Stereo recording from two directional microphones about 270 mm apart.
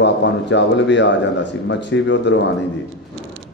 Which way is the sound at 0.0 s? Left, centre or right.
Left.